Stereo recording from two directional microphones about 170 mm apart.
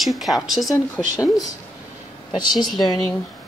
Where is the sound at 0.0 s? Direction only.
Centre (ahead or behind).